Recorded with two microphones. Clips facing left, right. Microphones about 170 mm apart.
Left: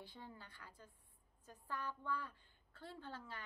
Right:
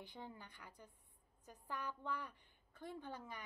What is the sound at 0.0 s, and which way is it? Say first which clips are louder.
Speech: right 2 dB; 20° right (ahead or behind).